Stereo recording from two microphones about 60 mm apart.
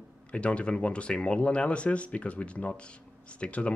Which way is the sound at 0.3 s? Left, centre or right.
Centre.